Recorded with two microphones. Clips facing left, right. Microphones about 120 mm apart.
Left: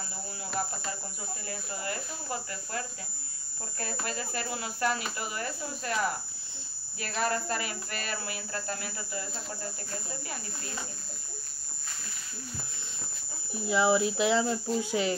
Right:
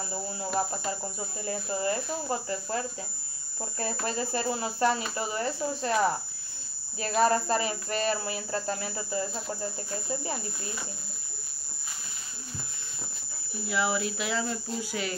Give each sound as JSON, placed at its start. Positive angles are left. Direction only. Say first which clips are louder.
{"t": 0.6, "sound": "speech", "louder": "right 4 dB", "side_deg": -25}
{"t": 4.0, "sound": "speech", "louder": "right 6 dB", "side_deg": -30}
{"t": 7.2, "sound": "speech", "louder": "right 6 dB", "side_deg": -30}
{"t": 13.7, "sound": "speech", "louder": "left 4 dB", "side_deg": 20}